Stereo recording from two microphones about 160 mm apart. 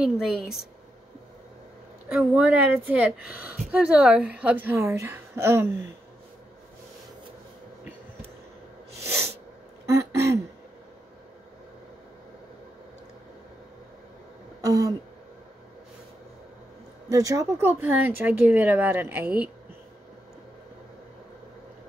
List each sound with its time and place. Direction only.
0.0 s speech: 5° right (ahead or behind)
2.1 s a woman's voice: 10° right (ahead or behind)
9.0 s sneeze: 15° right (ahead or behind)
9.8 s throat clearing: 20° right (ahead or behind)
14.6 s a sound: 20° right (ahead or behind)
17.1 s a woman's voice: 20° right (ahead or behind)